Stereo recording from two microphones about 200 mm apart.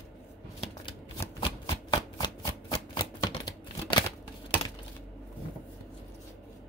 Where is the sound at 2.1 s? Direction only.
25° left (ahead or behind).